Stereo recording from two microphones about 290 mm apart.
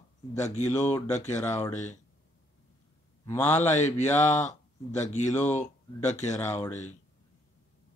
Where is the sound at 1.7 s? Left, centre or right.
Left.